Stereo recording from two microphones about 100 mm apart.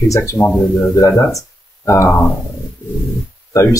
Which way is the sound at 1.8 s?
30° left (ahead or behind).